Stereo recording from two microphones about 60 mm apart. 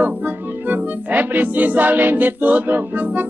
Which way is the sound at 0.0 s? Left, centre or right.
Right.